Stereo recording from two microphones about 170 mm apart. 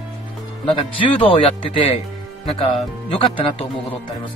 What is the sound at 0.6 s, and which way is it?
Speech, 30° left (ahead or behind).